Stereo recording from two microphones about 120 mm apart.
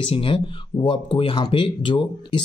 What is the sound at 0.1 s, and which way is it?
Speech, 50° left (ahead or behind).